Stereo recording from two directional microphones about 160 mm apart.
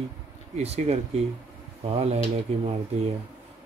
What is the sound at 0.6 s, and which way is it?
Speech, 40° right (ahead or behind).